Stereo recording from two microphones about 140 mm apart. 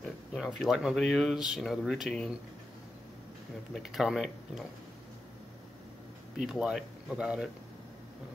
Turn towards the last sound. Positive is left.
turn(degrees=-5)  # may be behind; listen again after turning